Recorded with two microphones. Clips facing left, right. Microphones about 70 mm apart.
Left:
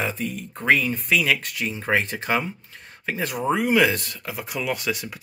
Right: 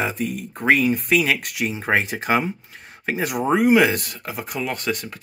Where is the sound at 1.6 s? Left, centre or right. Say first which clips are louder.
Right 2 dB; centre.